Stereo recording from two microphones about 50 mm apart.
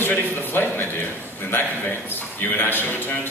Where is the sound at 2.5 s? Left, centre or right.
Left.